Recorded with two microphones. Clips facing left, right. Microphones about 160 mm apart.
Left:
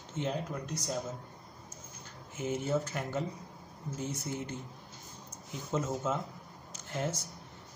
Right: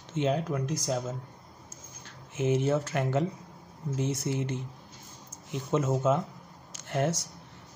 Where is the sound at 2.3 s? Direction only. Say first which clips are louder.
Right 6 dB; 75° right (ahead or behind).